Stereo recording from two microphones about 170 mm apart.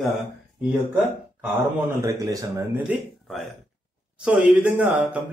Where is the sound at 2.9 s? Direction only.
Centre (ahead or behind).